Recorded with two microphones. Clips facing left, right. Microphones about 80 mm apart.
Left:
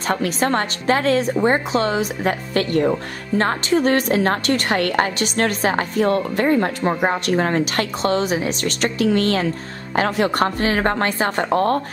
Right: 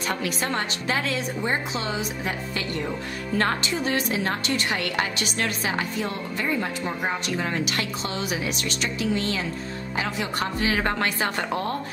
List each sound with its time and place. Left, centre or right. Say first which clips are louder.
0.0 s a woman's voice: left 7 dB; left
3.3 s a woman's voice: left 4 dB; left
3.7 s a woman's voice: left 9 dB; left
8.3 s a woman's voice: left 7 dB; left
8.8 s a woman's voice: left 8 dB; left